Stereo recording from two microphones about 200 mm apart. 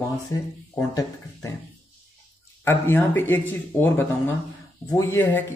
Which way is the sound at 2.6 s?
10° left (ahead or behind).